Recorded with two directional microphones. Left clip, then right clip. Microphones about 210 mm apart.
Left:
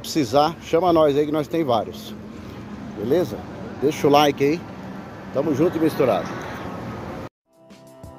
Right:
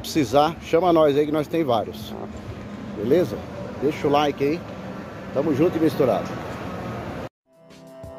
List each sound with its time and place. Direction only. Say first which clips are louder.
0.0 s speech: even; 5° left (ahead or behind)
3.9 s speech: left 5 dB; 45° left (ahead or behind)
5.3 s speech: even; 5° left (ahead or behind)